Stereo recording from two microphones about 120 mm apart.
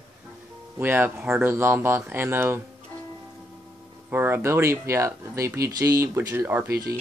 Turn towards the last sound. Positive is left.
turn(degrees=-15)  # may be behind; listen again after turning